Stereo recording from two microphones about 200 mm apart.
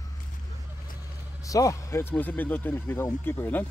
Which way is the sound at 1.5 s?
15° left (ahead or behind).